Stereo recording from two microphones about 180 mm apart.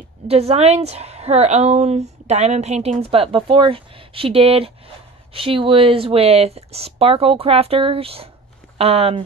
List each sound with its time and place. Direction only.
0.3 s a woman's voice: 35° right (ahead or behind)